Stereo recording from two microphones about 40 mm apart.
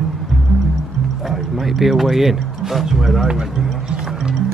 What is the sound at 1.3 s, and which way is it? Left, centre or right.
Speech, centre.